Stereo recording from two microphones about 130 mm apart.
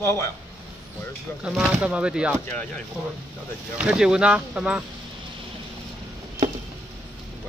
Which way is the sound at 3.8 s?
5° right (ahead or behind).